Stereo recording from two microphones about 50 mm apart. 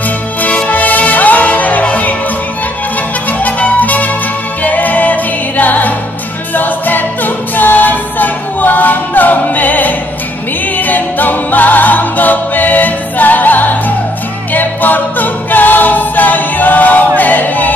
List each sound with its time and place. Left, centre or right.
0.4 s music: left
3.3 s music: left
10.8 s singing: left
14.5 s a capella: left